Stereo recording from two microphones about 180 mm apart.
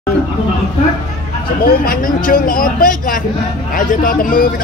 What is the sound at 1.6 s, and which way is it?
Speech, 55° left (ahead or behind).